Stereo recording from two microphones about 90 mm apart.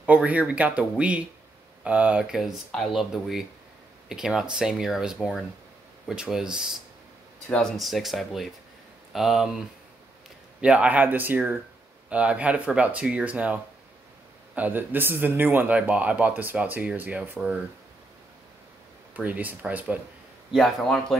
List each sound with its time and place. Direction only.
0.0 s speech: 15° right (ahead or behind)
10.6 s a man's voice: 15° right (ahead or behind)
19.1 s a man's voice: 20° right (ahead or behind)
20.5 s speech: centre (ahead or behind)